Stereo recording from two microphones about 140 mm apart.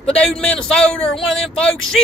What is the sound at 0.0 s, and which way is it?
Speech, 5° left (ahead or behind).